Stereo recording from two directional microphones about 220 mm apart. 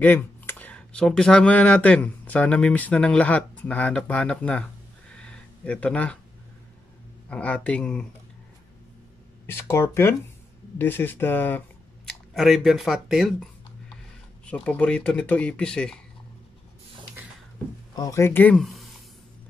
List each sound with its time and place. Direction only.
0.0 s speech: 10° left (ahead or behind)
5.1 s a sound: 5° left (ahead or behind)
7.2 s speech: 5° left (ahead or behind)
9.5 s speech: 10° left (ahead or behind)
17.9 s speech: 15° left (ahead or behind)